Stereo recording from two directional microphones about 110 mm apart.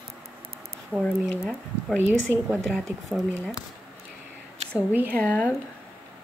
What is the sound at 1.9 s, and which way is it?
Speech, 20° right (ahead or behind).